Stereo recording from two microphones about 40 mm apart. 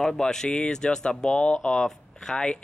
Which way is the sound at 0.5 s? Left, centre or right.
Left.